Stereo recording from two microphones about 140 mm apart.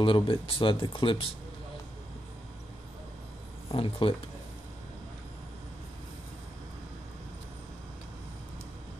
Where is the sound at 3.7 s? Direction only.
40° left (ahead or behind).